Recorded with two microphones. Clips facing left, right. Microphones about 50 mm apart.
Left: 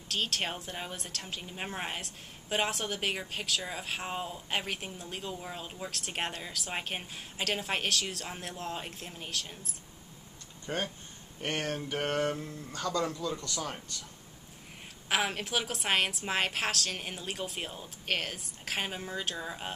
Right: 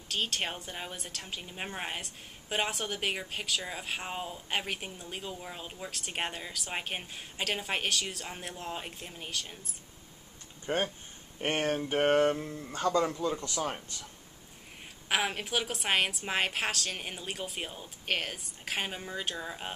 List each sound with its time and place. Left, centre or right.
0.1 s a woman's voice: centre
10.7 s speech: right
15.0 s a woman's voice: centre